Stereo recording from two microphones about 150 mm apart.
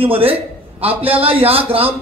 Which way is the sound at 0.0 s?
40° right (ahead or behind).